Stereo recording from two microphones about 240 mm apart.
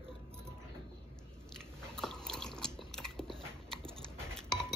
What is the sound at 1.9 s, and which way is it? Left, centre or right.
Biting, centre.